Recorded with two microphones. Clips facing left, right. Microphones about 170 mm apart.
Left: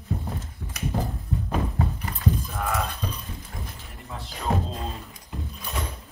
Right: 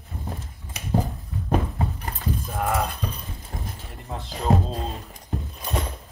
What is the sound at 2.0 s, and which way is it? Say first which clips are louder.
Livestock: left 2 dB; 35° right (ahead or behind).